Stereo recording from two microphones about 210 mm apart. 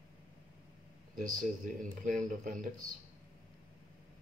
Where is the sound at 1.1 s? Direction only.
40° right (ahead or behind).